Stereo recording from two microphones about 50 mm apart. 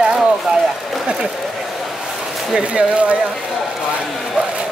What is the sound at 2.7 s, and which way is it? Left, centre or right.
Speech, right.